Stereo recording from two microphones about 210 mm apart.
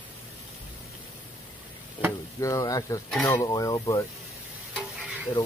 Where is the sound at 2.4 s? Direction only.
15° left (ahead or behind).